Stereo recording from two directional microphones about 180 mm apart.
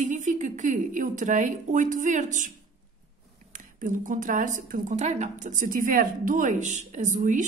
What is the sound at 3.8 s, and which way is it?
A woman's voice, 45° right (ahead or behind).